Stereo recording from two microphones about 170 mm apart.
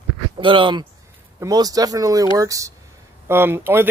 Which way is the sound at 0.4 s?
30° right (ahead or behind).